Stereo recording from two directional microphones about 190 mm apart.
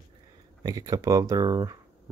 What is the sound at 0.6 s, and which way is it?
Speech, 20° right (ahead or behind).